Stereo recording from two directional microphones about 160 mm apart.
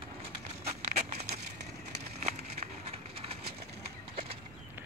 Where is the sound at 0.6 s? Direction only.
40° right (ahead or behind).